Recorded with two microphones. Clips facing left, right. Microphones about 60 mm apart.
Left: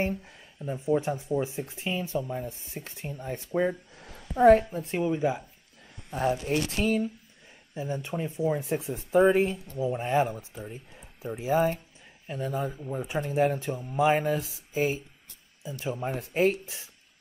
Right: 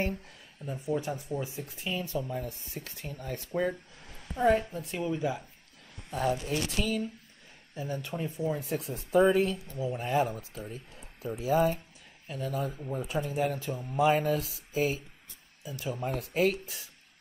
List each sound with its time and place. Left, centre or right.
0.2 s speech: left
4.4 s a woman's voice: left
4.8 s speech: left
6.4 s speech: left
7.7 s speech: left